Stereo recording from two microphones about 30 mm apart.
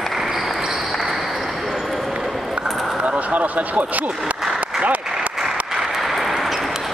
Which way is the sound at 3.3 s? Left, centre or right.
Right.